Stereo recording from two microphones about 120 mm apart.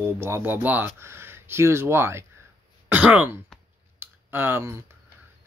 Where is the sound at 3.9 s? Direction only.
15° right (ahead or behind).